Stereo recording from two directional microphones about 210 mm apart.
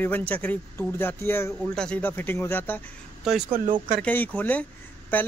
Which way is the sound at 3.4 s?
40° right (ahead or behind).